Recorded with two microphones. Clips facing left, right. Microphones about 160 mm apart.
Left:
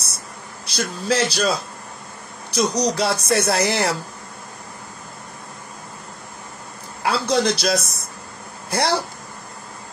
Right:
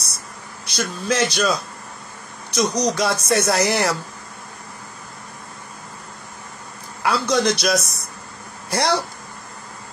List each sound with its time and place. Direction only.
0.7 s speech: 30° left (ahead or behind)
3.2 s speech: 25° right (ahead or behind)
3.4 s a man's voice: 25° left (ahead or behind)
7.0 s a man's voice: 30° left (ahead or behind)